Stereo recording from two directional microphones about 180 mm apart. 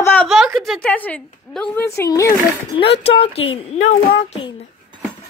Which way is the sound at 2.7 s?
35° left (ahead or behind).